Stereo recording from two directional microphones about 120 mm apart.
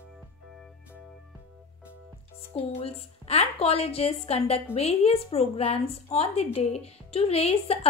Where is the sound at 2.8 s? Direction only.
55° left (ahead or behind).